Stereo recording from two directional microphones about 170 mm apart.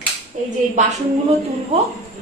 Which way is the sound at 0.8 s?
45° right (ahead or behind).